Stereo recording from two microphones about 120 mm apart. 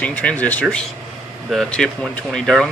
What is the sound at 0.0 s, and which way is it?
Speech, 10° left (ahead or behind).